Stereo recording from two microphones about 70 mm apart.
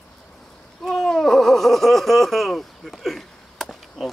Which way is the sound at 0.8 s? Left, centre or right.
Centre.